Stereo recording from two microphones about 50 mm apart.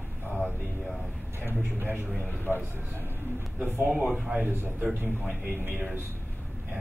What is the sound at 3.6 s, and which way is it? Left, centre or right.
Speech, right.